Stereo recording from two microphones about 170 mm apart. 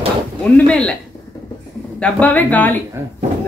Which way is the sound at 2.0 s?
5° left (ahead or behind).